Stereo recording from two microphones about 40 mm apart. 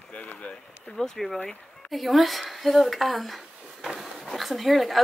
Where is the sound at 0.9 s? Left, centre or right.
Centre.